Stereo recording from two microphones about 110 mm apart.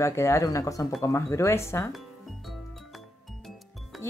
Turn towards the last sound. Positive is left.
turn(degrees=0)  # may be behind; listen again after turning